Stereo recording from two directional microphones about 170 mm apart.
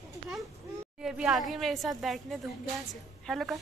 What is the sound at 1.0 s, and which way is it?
A woman's voice, 5° right (ahead or behind).